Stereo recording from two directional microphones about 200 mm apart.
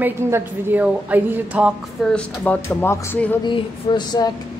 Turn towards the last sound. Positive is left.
turn(degrees=20)  # may be behind; listen again after turning